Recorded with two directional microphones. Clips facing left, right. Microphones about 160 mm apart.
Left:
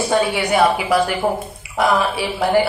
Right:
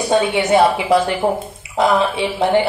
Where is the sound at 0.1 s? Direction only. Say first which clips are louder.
Right 5 dB; 25° right (ahead or behind).